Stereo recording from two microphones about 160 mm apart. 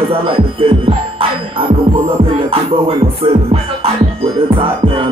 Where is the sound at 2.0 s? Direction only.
35° right (ahead or behind).